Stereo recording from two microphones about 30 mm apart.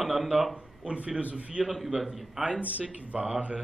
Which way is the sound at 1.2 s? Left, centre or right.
Right.